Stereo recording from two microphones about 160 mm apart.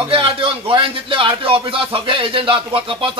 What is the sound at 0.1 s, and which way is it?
Speech, 35° right (ahead or behind).